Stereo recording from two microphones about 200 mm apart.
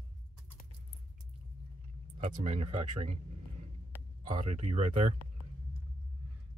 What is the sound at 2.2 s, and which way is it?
Speech, 35° right (ahead or behind).